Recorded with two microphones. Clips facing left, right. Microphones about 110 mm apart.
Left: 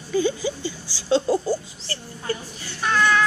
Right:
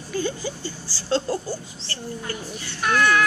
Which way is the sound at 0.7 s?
40° right (ahead or behind).